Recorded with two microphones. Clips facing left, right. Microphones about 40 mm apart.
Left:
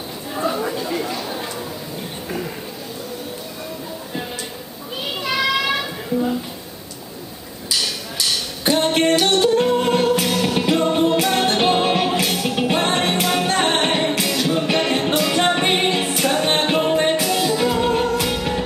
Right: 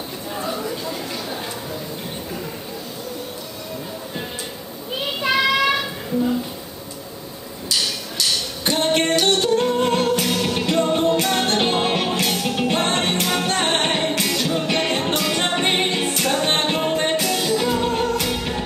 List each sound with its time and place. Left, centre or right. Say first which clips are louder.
0.5 s chatter: left 5 dB; centre
5.2 s children playing: right 2 dB; centre
8.6 s music: left 3 dB; centre